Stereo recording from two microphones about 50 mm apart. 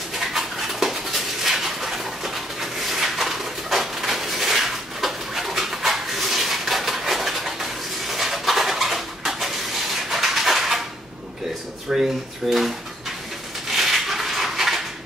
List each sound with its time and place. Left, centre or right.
0.1 s dog: centre
11.9 s drawer open or close: right
12.4 s a sound: centre